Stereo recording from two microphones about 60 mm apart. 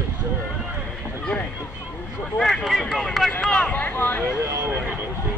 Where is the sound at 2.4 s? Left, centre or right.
Centre.